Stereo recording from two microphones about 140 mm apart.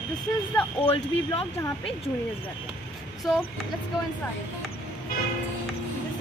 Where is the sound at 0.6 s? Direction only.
10° left (ahead or behind).